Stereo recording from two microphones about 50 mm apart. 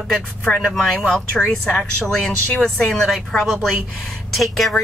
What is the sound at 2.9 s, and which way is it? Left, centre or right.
Speech, centre.